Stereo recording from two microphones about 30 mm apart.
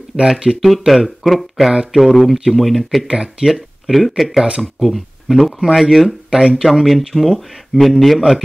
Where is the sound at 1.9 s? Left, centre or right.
Centre.